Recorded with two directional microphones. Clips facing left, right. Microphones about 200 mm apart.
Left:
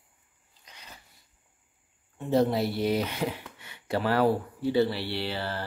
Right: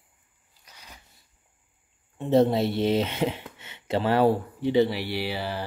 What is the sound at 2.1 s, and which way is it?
Speech, 25° right (ahead or behind).